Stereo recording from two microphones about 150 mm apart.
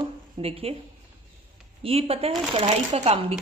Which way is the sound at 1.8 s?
40° right (ahead or behind).